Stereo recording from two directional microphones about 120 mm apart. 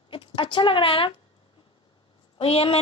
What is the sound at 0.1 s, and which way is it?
Speech, 45° left (ahead or behind).